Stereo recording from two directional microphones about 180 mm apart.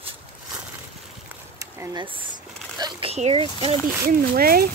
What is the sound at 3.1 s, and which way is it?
Speech, 35° right (ahead or behind).